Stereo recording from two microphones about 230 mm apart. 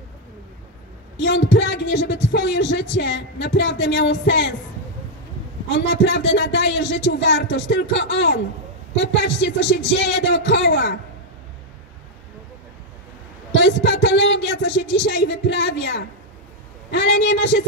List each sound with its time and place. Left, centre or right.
1.1 s speech: left
5.7 s speech: left
13.5 s speech: left